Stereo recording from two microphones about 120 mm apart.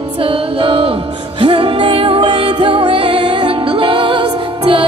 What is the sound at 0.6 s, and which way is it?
Music, 50° right (ahead or behind).